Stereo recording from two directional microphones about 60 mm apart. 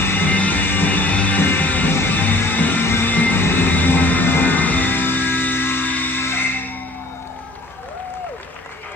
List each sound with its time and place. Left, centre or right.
0.0 s music: left
0.3 s music: left